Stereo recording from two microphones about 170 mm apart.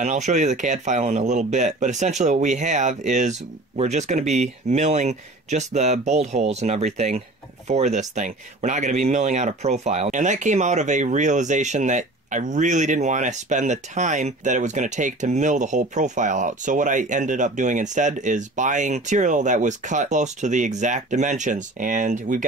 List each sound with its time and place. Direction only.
0.0 s speech: 45° right (ahead or behind)